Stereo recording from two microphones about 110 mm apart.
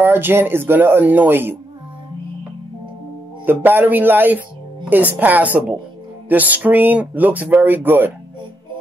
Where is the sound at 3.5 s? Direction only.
15° right (ahead or behind).